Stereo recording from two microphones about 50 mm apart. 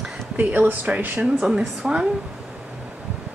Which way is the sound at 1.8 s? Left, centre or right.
Centre.